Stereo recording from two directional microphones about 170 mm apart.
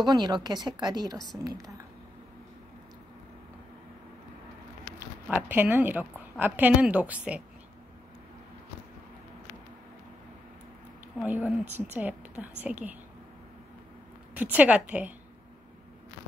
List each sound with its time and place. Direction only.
0.0 s a woman's voice: 25° right (ahead or behind)
4.9 s speech: 10° right (ahead or behind)
11.1 s a woman's voice: 5° right (ahead or behind)
14.3 s a woman's voice: 10° right (ahead or behind)